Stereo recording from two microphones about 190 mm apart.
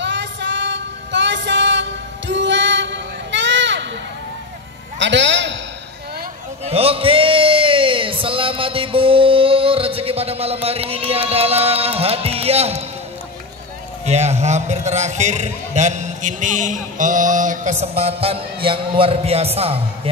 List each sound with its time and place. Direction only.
0.0 s music: 70° right (ahead or behind)
4.9 s a man's voice: 70° right (ahead or behind)
6.6 s a sound: 30° right (ahead or behind)
14.0 s a man's voice: 35° right (ahead or behind)